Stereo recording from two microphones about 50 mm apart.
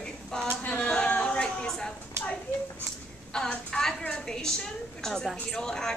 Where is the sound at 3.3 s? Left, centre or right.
Centre.